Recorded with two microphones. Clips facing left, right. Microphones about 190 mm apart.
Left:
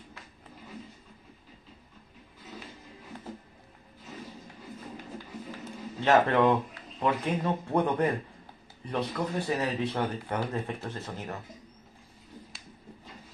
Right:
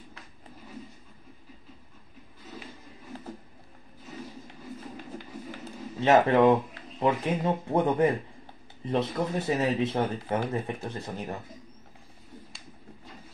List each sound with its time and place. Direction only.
5.9 s speech: 20° right (ahead or behind)